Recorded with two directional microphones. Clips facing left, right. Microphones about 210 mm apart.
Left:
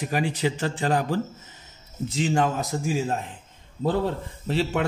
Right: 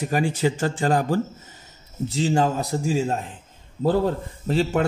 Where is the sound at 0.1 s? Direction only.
45° right (ahead or behind).